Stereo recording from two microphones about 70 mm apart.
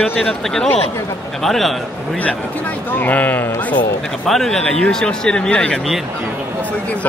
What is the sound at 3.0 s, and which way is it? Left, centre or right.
Speech, left.